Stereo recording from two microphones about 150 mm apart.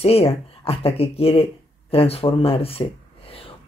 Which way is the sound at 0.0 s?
40° left (ahead or behind).